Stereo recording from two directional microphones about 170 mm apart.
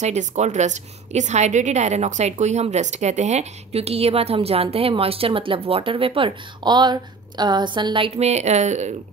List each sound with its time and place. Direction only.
0.0 s a woman's voice: 45° right (ahead or behind)